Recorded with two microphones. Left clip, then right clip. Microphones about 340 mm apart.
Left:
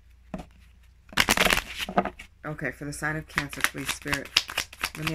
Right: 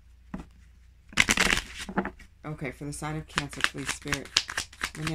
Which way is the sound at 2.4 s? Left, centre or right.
Centre.